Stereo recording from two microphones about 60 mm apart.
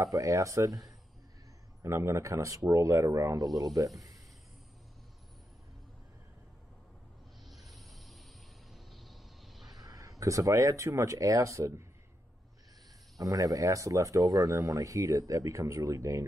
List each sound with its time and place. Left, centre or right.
0.0 s speech: right
1.8 s speech: right
2.6 s speech: right
3.3 s speech: right
7.4 s a sound: centre
9.8 s speech: right
13.2 s speech: right